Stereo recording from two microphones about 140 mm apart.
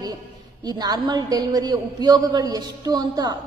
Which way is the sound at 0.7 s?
30° right (ahead or behind).